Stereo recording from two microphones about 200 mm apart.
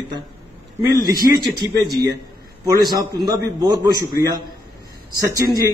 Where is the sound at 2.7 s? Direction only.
20° right (ahead or behind).